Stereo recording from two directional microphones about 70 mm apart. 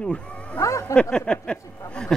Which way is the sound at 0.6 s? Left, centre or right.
Left.